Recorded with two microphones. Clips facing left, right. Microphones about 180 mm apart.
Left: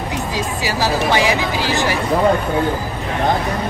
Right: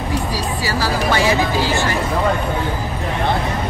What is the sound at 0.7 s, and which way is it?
Speech, 15° left (ahead or behind).